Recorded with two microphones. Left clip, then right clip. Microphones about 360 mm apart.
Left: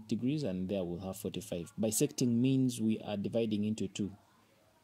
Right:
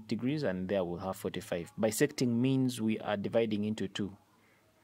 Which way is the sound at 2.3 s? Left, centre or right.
Right.